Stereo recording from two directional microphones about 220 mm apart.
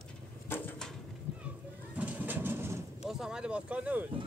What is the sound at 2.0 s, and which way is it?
Bird, 5° right (ahead or behind).